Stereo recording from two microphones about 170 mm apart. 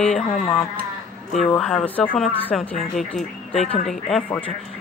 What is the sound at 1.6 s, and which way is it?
Speech, 5° left (ahead or behind).